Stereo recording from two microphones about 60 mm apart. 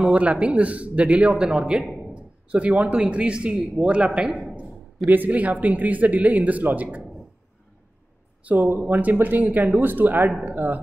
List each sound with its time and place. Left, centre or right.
0.0 s a man's voice: right
4.6 s a man's voice: right
8.5 s a man's voice: right